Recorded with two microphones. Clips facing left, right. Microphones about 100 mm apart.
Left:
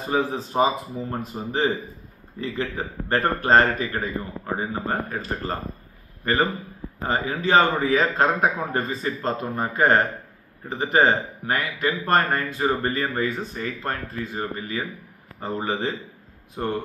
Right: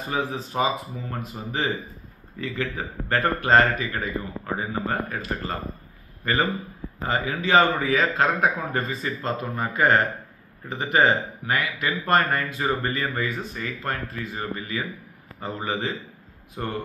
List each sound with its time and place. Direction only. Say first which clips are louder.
0.1 s speech: left 4 dB; 30° left (ahead or behind)
7.0 s speech: left 1 dB; 35° left (ahead or behind)